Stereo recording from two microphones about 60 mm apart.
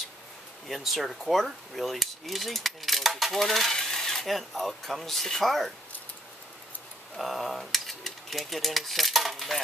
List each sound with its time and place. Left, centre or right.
0.7 s speech: centre
7.2 s speech: centre